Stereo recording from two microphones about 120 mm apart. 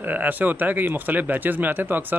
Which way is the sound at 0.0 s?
15° right (ahead or behind).